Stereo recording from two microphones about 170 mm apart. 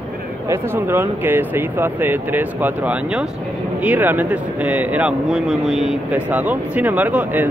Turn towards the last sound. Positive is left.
turn(degrees=-10)  # may be behind; listen again after turning